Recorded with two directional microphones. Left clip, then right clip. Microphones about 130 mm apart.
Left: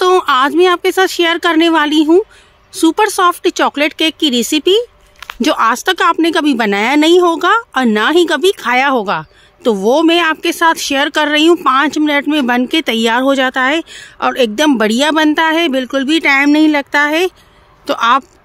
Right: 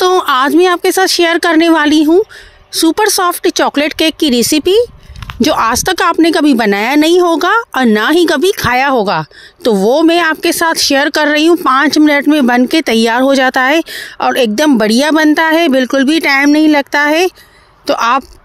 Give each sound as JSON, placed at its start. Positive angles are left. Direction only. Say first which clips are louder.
{"t": 0.0, "sound": "speech", "louder": "right 1 dB", "side_deg": -45}
{"t": 6.2, "sound": "speech", "louder": "right 3 dB", "side_deg": -40}
{"t": 6.7, "sound": "speech", "louder": "even", "side_deg": -55}